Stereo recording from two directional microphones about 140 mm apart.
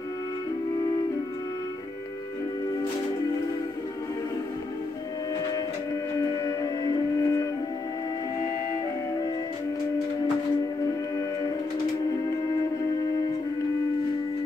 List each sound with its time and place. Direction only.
6.1 s music: 25° left (ahead or behind)